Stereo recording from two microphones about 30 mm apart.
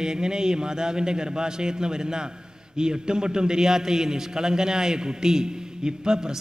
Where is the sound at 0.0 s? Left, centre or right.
Right.